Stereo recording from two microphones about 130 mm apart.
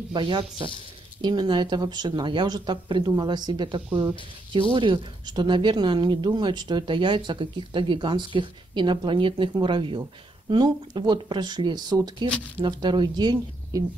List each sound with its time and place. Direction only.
0.1 s speech: 35° right (ahead or behind)